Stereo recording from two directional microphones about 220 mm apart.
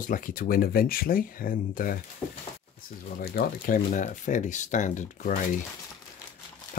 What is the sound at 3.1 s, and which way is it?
Speech, 40° left (ahead or behind).